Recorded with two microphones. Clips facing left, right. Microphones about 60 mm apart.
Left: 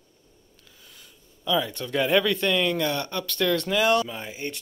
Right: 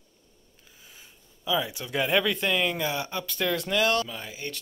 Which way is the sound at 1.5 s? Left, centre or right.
Centre.